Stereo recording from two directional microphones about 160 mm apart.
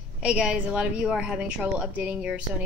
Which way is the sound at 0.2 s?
5° right (ahead or behind).